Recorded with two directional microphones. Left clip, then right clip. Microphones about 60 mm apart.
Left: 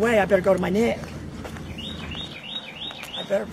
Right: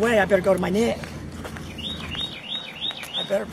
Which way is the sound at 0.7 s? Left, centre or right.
Centre.